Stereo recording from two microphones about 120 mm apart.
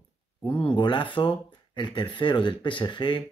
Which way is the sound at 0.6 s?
45° left (ahead or behind).